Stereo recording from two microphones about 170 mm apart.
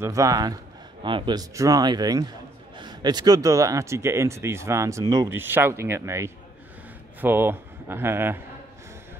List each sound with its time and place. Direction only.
0.0 s a man's voice: 20° right (ahead or behind)